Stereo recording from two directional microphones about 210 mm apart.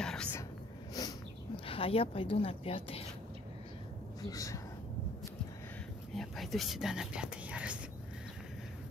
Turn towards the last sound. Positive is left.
turn(degrees=-5)  # may be behind; listen again after turning